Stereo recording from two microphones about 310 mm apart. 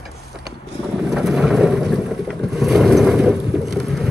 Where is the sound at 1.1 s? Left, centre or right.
Centre.